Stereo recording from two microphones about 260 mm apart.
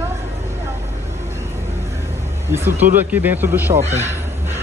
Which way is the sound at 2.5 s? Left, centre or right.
Centre.